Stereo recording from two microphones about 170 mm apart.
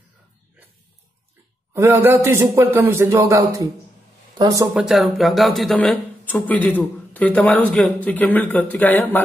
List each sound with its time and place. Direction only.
1.7 s a man's voice: 15° right (ahead or behind)
4.7 s speech: centre (ahead or behind)